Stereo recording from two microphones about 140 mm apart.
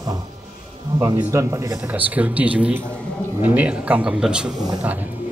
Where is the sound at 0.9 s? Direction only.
20° right (ahead or behind).